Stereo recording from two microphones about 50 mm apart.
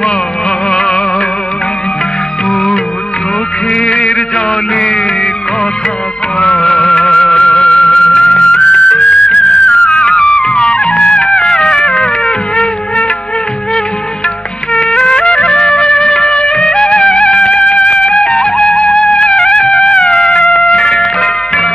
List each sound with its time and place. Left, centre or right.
0.7 s music: centre
3.7 s a sound: centre
6.4 s music of bollywood: centre
7.4 s music: left
10.4 s music: centre
15.0 s music: centre
18.3 s music: centre
19.1 s music: left